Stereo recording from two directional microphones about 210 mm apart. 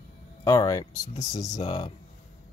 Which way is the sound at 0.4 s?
15° left (ahead or behind).